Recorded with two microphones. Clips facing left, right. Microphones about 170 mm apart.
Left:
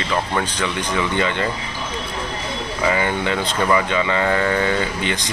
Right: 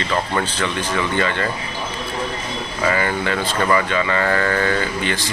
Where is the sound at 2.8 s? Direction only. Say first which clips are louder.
Even; 15° left (ahead or behind).